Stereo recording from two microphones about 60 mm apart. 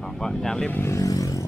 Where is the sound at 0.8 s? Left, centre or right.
Left.